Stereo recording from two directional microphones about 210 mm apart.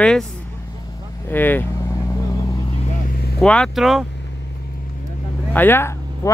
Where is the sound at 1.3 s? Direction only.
10° left (ahead or behind).